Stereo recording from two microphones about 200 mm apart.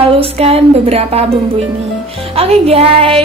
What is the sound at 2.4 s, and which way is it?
Speech, 30° right (ahead or behind).